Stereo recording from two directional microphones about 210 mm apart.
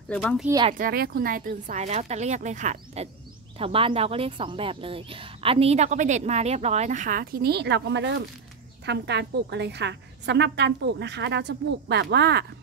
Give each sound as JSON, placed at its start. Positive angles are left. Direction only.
{"t": 0.1, "sound": "speech", "side_deg": 5}
{"t": 0.5, "sound": "speech", "side_deg": -20}
{"t": 0.7, "sound": "a woman's voice", "side_deg": -45}